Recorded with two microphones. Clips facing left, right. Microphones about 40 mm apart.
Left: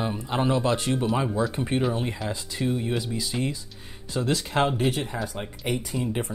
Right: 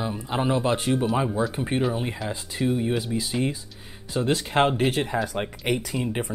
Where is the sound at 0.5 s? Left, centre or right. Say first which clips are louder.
Right 1 dB; right.